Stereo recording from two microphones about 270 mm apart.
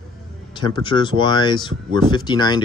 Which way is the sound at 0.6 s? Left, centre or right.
Centre.